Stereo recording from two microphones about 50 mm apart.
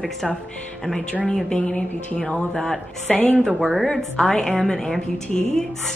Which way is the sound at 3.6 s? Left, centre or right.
Centre.